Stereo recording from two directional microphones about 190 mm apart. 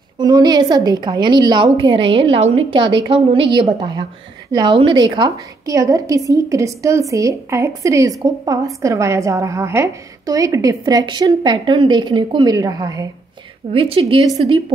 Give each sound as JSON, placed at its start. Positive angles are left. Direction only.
{"t": 0.2, "sound": "a woman's voice", "side_deg": -20}
{"t": 13.7, "sound": "a woman's voice", "side_deg": -30}